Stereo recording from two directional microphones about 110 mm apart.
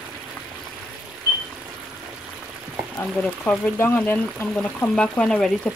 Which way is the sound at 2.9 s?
15° left (ahead or behind).